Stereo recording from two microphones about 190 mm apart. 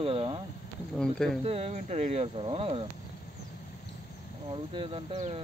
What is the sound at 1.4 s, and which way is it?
Speech, 30° right (ahead or behind).